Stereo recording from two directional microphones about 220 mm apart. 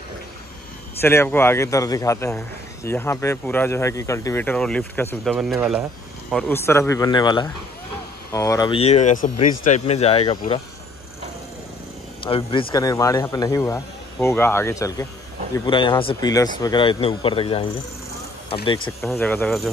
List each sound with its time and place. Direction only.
1.0 s speech: 10° left (ahead or behind)
6.3 s speech: 10° left (ahead or behind); by 10.4 s 25° left (ahead or behind)
12.3 s speech: 25° left (ahead or behind)
19.1 s speech: 10° left (ahead or behind)